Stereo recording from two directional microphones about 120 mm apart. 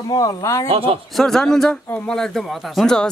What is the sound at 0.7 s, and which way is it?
Speech, 50° right (ahead or behind).